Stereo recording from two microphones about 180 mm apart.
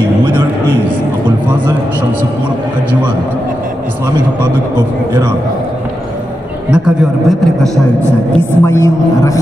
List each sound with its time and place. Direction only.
6.7 s a man's voice: centre (ahead or behind)
8.6 s a woman's voice: 15° left (ahead or behind)